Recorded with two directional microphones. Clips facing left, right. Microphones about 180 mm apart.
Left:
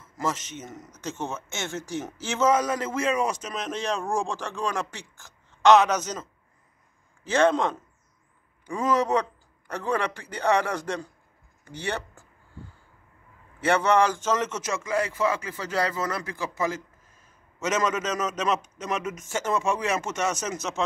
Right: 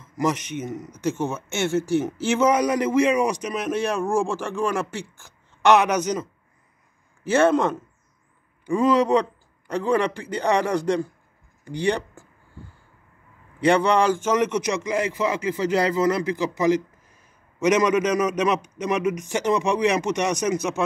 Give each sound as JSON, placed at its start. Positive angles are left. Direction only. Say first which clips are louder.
{"t": 0.0, "sound": "speech", "louder": "right 6 dB", "side_deg": -15}
{"t": 8.6, "sound": "a man's voice", "louder": "right 5 dB", "side_deg": -10}
{"t": 13.6, "sound": "speech", "louder": "right 3 dB", "side_deg": -15}